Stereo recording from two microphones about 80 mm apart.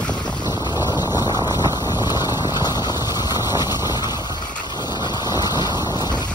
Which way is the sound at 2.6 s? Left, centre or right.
Left.